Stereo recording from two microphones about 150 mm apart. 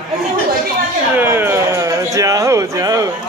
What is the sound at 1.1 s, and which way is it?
Speech, 15° right (ahead or behind).